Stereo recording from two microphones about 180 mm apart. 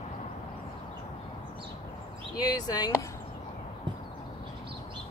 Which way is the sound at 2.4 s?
20° left (ahead or behind).